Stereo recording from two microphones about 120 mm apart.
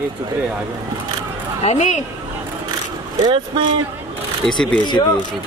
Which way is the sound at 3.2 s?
50° right (ahead or behind).